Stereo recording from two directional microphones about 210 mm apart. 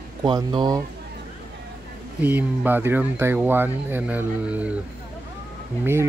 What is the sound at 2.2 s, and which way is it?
Speech, 10° right (ahead or behind).